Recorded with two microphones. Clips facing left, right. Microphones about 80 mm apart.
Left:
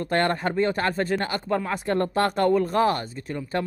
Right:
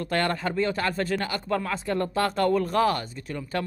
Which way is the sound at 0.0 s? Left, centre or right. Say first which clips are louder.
Left 3 dB; left.